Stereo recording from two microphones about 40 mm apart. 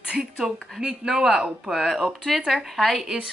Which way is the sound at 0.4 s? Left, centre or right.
Centre.